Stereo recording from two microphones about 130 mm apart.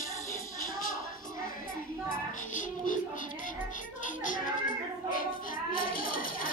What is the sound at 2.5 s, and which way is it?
Music, 80° left.